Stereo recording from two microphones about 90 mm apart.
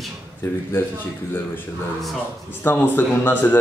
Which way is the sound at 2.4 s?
20° left (ahead or behind).